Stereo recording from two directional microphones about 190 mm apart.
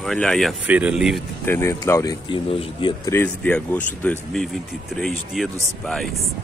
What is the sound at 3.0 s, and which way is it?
Speech, 10° left (ahead or behind).